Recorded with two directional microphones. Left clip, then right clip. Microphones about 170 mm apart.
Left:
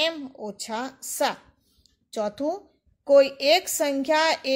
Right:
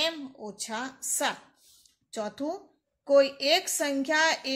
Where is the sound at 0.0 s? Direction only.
45° left (ahead or behind).